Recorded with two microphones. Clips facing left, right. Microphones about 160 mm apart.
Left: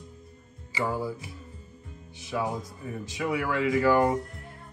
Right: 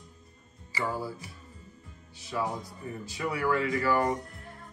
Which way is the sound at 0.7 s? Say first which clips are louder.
Left 3 dB; 20° left (ahead or behind).